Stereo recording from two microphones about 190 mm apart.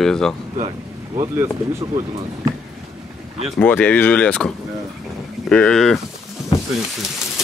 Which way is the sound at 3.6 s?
10° left (ahead or behind).